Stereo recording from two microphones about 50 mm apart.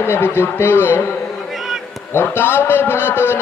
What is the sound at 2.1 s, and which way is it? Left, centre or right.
A man's voice, left.